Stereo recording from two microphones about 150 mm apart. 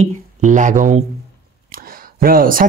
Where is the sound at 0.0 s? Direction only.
55° right (ahead or behind).